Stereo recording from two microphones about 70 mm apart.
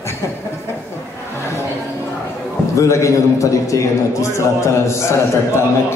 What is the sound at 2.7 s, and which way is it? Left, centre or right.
A man's voice, left.